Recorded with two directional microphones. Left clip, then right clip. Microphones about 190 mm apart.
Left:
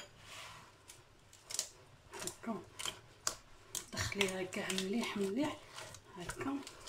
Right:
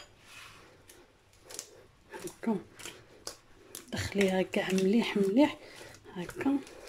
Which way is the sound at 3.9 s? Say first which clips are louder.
Right 7 dB; 50° right (ahead or behind).